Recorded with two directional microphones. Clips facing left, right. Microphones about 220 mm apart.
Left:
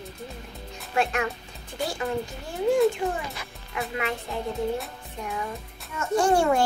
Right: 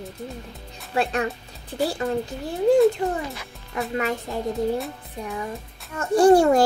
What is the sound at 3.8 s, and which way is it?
Music, 40° right (ahead or behind).